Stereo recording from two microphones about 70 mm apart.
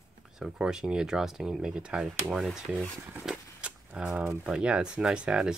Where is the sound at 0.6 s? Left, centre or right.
Centre.